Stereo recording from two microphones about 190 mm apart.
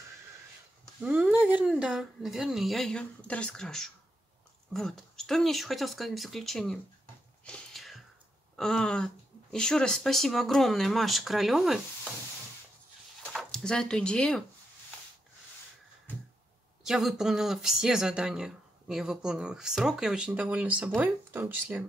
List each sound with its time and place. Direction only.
1.0 s speech: 5° right (ahead or behind)
7.4 s a sound: 5° left (ahead or behind)
8.5 s speech: 5° left (ahead or behind)
13.2 s speech: centre (ahead or behind)
16.8 s speech: 5° right (ahead or behind)